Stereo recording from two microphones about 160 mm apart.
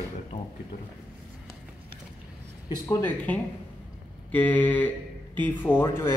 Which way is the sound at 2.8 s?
10° left (ahead or behind).